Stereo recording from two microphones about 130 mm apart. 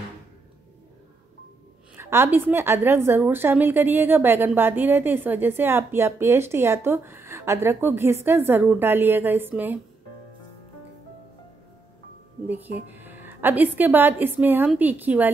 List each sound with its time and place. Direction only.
2.0 s a woman's voice: 20° right (ahead or behind)
12.4 s a woman's voice: 15° right (ahead or behind)